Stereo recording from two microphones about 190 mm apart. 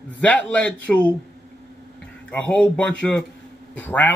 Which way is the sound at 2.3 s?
5° left (ahead or behind).